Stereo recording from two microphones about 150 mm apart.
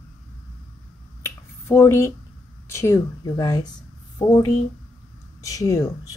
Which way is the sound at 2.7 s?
15° left (ahead or behind).